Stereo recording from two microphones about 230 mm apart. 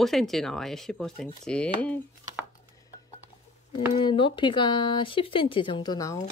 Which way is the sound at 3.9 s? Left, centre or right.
Left.